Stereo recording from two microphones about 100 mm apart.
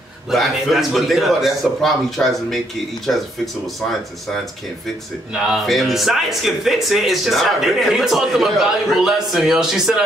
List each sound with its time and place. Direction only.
0.3 s speech: centre (ahead or behind)
5.3 s speech: centre (ahead or behind)